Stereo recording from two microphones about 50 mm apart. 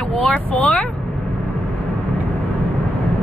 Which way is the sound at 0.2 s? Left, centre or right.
Left.